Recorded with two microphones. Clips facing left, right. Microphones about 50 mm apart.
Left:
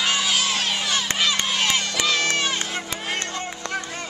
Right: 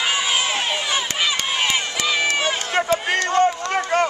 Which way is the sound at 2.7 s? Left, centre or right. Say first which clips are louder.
Right 9 dB; right.